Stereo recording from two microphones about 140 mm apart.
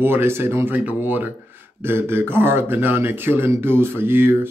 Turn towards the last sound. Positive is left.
turn(degrees=-15)  # may be behind; listen again after turning